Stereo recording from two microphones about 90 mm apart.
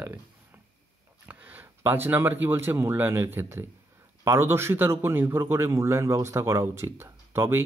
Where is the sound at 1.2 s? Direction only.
20° right (ahead or behind).